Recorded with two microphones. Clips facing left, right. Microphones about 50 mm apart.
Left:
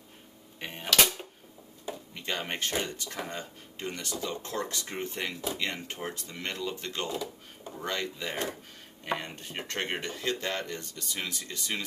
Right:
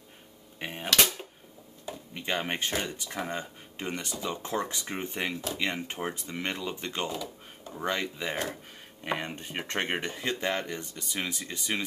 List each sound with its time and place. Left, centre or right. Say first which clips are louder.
0.6 s speech: right 3 dB; centre
0.8 s speech: even; centre
2.1 s speech: right 3 dB; right